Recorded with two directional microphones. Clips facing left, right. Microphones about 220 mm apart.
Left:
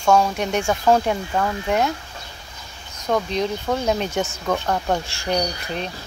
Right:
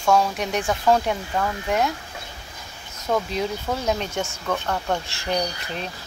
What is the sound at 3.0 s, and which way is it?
Speech, 5° right (ahead or behind).